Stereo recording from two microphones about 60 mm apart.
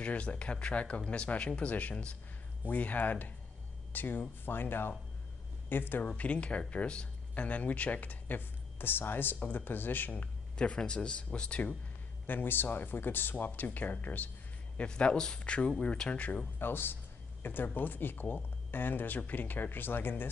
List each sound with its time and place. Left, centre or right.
0.0 s speech: left
6.0 s speech: centre
10.1 s speech: centre
12.3 s speech: left
14.8 s speech: centre
16.5 s a sound: left
17.7 s speech: left